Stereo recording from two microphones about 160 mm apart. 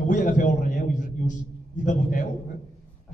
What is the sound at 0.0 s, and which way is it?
A man's voice, 50° left (ahead or behind).